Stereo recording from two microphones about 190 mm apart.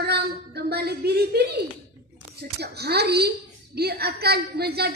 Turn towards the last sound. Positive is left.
turn(degrees=-55)  # may be behind; listen again after turning